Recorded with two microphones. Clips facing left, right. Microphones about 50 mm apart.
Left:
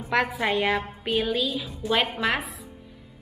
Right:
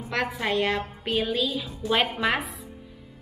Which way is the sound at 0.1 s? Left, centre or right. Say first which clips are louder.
Left 3 dB; centre.